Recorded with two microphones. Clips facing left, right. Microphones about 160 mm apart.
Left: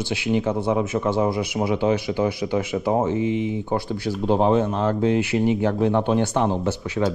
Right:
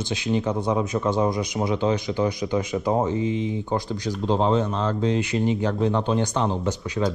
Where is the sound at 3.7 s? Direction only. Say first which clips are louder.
Left 2 dB; 15° right (ahead or behind).